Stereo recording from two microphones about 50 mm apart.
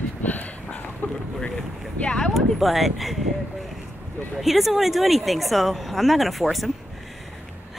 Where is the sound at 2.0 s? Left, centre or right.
Centre.